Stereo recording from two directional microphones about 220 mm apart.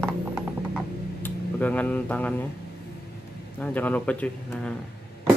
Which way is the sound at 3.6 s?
10° left (ahead or behind).